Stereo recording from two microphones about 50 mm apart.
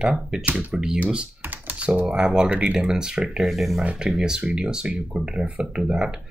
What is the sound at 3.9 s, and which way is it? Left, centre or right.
Speech, centre.